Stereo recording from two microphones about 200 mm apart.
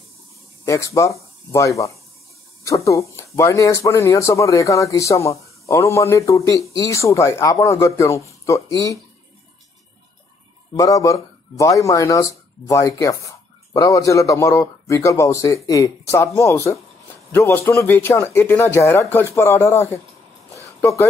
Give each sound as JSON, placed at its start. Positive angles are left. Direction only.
{"t": 0.7, "sound": "speech", "side_deg": 15}
{"t": 10.8, "sound": "speech", "side_deg": 15}